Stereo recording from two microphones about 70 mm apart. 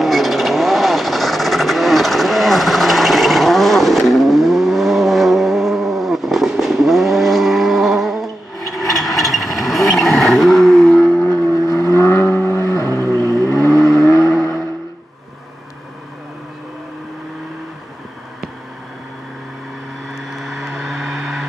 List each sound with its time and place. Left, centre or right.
0.0 s vehicle: centre
11.5 s vehicle: left
13.1 s vehicle: centre
20.1 s vehicle: centre